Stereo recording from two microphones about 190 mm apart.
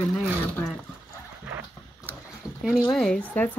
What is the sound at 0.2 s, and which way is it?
Speech, centre (ahead or behind).